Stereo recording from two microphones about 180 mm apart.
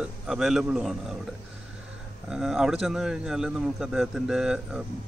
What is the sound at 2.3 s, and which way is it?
Speech, 5° right (ahead or behind).